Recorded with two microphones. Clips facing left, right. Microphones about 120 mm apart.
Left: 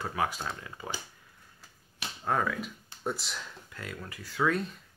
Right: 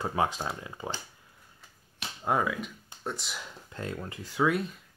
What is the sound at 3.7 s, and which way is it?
Speech, 30° right (ahead or behind).